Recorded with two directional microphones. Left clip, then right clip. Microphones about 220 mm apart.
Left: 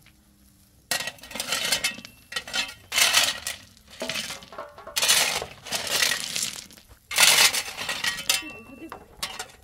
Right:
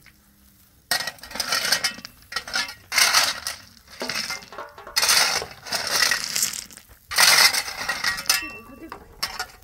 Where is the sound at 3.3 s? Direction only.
10° left (ahead or behind).